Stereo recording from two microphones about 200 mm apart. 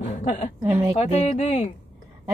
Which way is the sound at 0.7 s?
10° right (ahead or behind).